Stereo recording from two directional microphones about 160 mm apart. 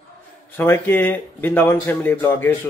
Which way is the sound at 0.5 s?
15° left (ahead or behind).